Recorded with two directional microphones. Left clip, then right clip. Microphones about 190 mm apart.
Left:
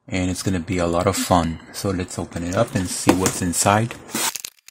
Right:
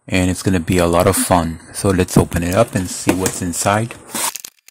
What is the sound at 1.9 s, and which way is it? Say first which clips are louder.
Speech: right 12 dB; 25° right (ahead or behind).